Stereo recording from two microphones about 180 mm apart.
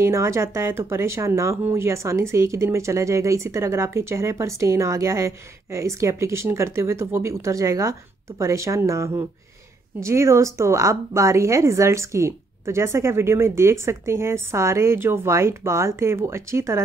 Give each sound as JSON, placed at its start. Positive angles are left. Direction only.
{"t": 0.0, "sound": "speech", "side_deg": -15}